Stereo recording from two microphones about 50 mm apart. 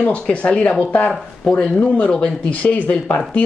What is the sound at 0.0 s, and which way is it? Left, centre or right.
Speech, left.